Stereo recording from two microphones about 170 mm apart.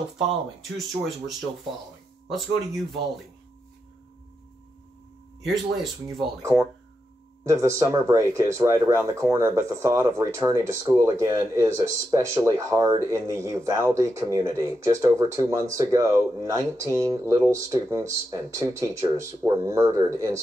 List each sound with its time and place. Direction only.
0.2 s speech: centre (ahead or behind)
6.4 s speech: 15° right (ahead or behind)